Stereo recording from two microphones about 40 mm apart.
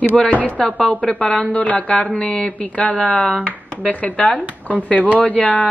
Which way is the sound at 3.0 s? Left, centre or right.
Left.